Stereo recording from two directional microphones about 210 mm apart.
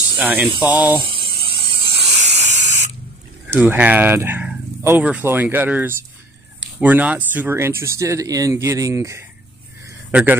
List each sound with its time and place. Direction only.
0.2 s speech: 10° right (ahead or behind)
0.6 s speech: 20° left (ahead or behind)
1.0 s spray: 25° right (ahead or behind)
3.4 s speech: 5° right (ahead or behind)